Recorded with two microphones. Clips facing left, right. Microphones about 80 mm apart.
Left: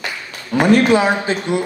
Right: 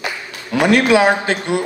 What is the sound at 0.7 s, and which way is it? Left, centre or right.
Speech, right.